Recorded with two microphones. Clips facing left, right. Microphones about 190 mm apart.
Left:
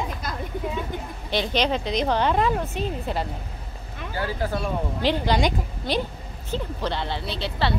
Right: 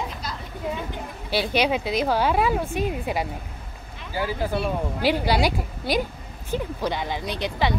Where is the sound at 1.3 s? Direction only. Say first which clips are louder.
Right 1 dB; 10° right (ahead or behind).